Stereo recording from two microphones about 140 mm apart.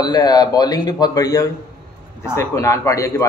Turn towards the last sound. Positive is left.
turn(degrees=20)  # may be behind; listen again after turning